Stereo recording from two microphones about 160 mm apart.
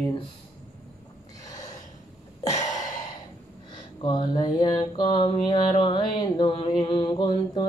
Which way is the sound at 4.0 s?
30° left (ahead or behind).